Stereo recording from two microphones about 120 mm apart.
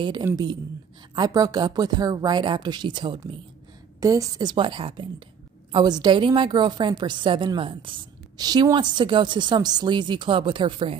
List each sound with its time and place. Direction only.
0.2 s a man's voice: 30° right (ahead or behind)
4.0 s a woman's voice: 30° right (ahead or behind); by 11.0 s 45° right (ahead or behind)